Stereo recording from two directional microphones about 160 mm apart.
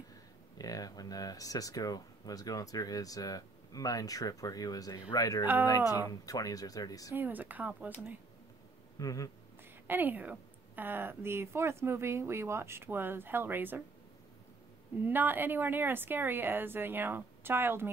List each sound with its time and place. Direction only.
0.6 s speech: 25° left (ahead or behind)
5.8 s speech: 10° right (ahead or behind)
6.0 s speech: 20° left (ahead or behind)
7.2 s speech: 10° right (ahead or behind)
8.9 s speech: 20° left (ahead or behind)
9.8 s speech: 10° right (ahead or behind)
15.0 s speech: 10° right (ahead or behind)